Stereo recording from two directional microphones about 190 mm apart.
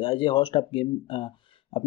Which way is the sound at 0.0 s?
25° left (ahead or behind).